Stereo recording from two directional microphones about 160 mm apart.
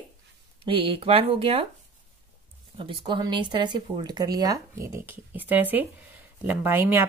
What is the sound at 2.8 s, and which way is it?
A woman's voice, 30° right (ahead or behind).